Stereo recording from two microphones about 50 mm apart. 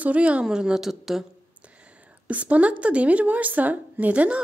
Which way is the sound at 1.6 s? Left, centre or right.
Right.